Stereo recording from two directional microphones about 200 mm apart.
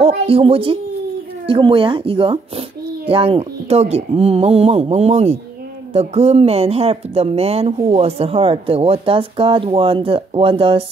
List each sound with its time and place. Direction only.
0.0 s speech: 30° right (ahead or behind)